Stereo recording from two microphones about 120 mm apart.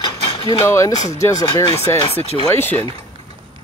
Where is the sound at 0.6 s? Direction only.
25° left (ahead or behind).